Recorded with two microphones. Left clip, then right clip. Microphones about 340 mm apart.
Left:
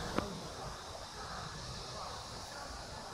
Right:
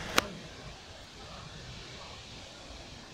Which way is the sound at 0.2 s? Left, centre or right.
Right.